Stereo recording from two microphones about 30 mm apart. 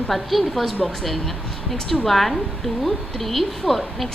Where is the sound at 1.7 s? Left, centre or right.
Centre.